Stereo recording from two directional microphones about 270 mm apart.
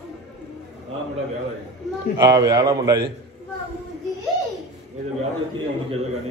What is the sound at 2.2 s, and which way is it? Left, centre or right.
Speech, centre.